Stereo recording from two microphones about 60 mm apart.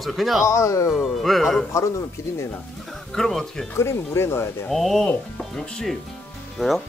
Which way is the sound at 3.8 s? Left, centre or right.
Left.